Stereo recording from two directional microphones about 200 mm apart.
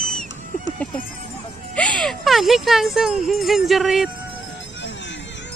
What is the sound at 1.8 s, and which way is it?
Speech, 5° left (ahead or behind).